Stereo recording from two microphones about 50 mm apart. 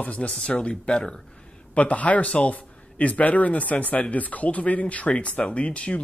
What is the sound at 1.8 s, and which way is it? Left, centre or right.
Speech, left.